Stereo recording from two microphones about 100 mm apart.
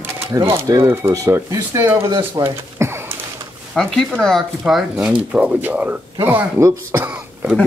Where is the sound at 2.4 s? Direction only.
25° right (ahead or behind).